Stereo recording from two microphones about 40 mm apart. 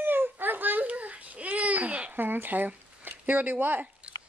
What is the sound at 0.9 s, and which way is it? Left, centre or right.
A child's voice, right.